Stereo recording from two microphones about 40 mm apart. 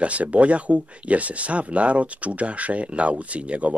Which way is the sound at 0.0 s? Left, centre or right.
Right.